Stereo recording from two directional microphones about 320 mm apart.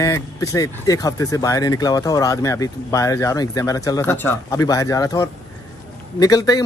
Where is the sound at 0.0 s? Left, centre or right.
Centre.